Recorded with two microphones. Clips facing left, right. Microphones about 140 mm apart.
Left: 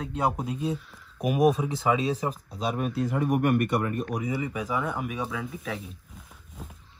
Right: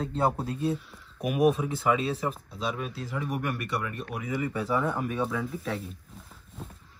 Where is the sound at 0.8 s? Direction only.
Centre (ahead or behind).